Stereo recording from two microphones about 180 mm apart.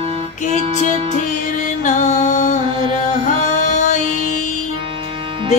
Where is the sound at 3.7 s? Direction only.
45° left (ahead or behind).